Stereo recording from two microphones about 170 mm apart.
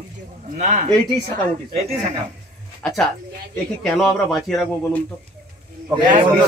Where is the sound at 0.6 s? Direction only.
45° right (ahead or behind).